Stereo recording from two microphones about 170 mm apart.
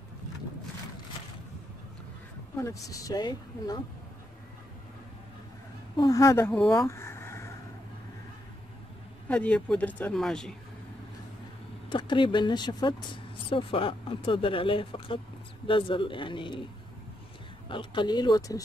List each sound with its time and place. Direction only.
2.5 s speech: 20° left (ahead or behind)
5.9 s speech: 20° left (ahead or behind)
9.3 s speech: 5° left (ahead or behind)
11.9 s speech: 30° left (ahead or behind)
17.6 s speech: 30° left (ahead or behind)